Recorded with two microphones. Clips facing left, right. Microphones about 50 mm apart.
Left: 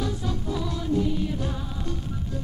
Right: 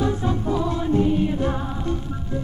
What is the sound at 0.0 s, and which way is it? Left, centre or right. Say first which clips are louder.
Music: right 7 dB; right.